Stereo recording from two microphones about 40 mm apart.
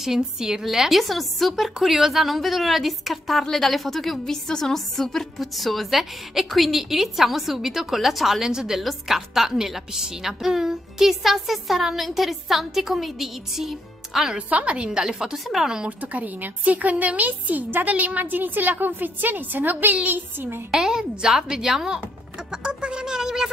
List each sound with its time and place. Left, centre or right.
0.0 s a woman's voice: centre
14.5 s a woman's voice: right
14.9 s a woman's voice: centre
15.3 s a woman's voice: centre
16.0 s a woman's voice: right
18.2 s a woman's voice: right
20.1 s speech: right
20.7 s a woman's voice: centre